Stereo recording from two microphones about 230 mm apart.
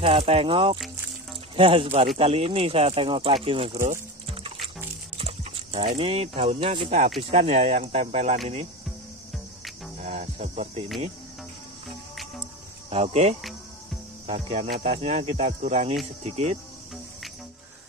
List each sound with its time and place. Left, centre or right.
0.0 s speech: right
3.8 s music: right
5.1 s speech: right
10.0 s music: right
12.9 s speech: right